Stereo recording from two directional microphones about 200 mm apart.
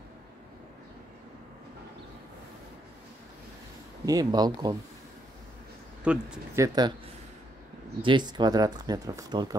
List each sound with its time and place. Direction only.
4.0 s speech: 20° right (ahead or behind)
6.0 s speech: 10° right (ahead or behind)
8.0 s speech: 20° right (ahead or behind)